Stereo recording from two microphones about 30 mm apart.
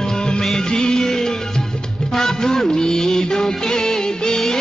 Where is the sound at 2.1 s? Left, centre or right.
Centre.